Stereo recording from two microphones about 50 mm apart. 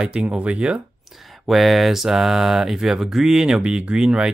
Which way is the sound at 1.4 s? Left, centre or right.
Centre.